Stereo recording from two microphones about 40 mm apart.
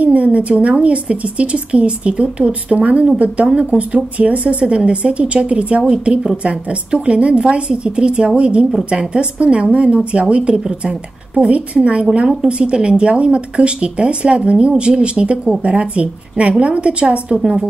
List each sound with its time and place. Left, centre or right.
0.0 s a sound: right
0.8 s speech: right
17.4 s a woman's voice: centre